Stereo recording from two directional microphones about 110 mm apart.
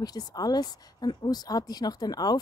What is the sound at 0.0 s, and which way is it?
A woman's voice, 35° left (ahead or behind).